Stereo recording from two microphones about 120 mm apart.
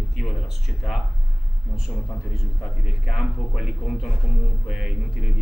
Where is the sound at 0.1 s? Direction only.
Centre (ahead or behind).